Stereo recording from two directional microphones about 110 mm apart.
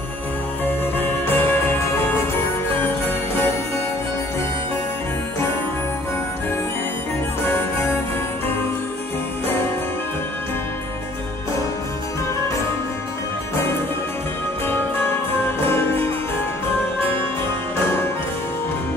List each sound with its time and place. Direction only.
0.9 s music: 20° left (ahead or behind)